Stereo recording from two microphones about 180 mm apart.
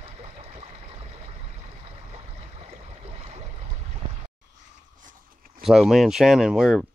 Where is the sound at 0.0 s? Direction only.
35° right (ahead or behind).